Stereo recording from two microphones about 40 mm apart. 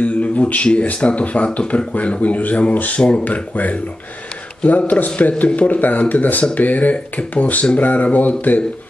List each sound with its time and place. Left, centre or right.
0.0 s speech: left
3.0 s speech: left
3.3 s speech: left